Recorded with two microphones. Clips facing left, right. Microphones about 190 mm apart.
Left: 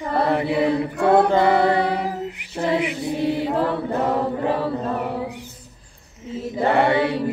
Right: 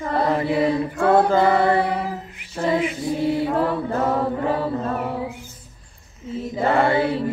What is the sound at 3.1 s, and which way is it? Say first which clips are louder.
Chant: right 1 dB; 20° left (ahead or behind).